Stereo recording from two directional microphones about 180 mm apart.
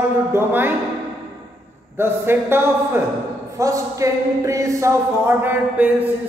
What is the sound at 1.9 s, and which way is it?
Speech, 15° right (ahead or behind).